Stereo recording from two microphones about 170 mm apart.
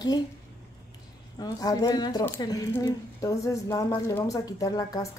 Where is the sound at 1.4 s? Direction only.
20° left (ahead or behind).